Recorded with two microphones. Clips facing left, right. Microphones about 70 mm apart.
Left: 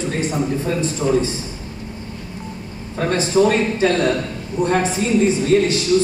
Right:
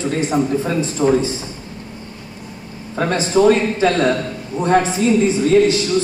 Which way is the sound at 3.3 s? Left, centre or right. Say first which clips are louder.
Right 3 dB; right.